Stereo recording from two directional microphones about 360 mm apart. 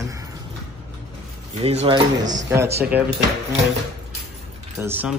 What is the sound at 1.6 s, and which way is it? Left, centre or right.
Speech, centre.